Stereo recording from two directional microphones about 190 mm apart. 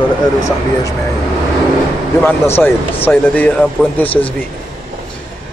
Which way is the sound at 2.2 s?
10° left (ahead or behind).